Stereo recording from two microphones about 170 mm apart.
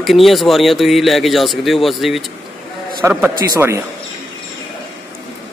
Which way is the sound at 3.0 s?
15° right (ahead or behind).